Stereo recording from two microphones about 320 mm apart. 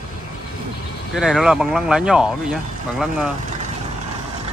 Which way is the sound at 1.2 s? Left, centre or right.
Centre.